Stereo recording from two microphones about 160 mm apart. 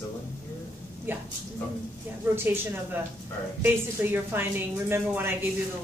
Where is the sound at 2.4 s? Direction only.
10° right (ahead or behind).